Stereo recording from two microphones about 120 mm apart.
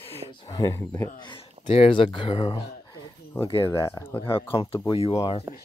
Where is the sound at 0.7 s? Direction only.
25° left (ahead or behind).